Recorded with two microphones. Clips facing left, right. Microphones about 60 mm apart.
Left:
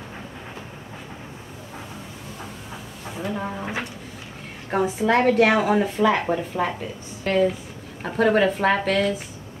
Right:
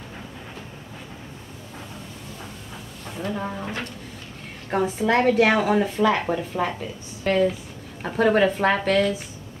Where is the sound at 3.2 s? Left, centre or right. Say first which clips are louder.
Even; centre.